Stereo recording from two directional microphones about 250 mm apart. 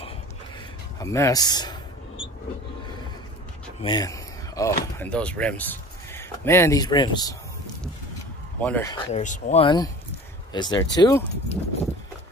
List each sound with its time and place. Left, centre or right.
0.9 s speech: centre
3.8 s a sound: centre
4.9 s speech: centre
8.5 s speech: centre
8.9 s speech: left